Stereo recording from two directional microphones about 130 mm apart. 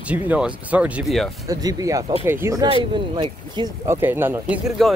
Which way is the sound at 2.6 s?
40° right (ahead or behind).